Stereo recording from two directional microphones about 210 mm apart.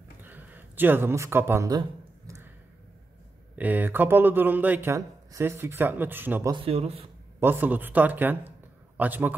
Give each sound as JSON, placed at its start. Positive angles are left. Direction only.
{"t": 0.2, "sound": "a sound", "side_deg": -10}
{"t": 3.5, "sound": "speech", "side_deg": -10}
{"t": 6.5, "sound": "speech", "side_deg": -25}
{"t": 7.3, "sound": "a man's voice", "side_deg": -10}